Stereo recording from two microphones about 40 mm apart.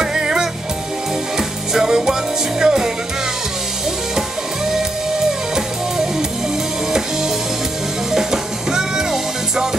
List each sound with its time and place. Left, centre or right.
0.0 s music: centre
1.7 s music: centre
8.1 s music: centre